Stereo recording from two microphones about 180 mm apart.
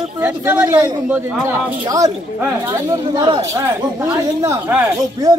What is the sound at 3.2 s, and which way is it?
Speech, 20° right (ahead or behind).